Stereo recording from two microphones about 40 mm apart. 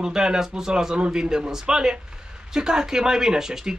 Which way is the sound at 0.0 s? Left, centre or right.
Centre.